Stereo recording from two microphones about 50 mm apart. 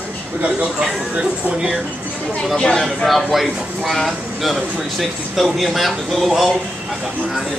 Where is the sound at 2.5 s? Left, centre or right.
Centre.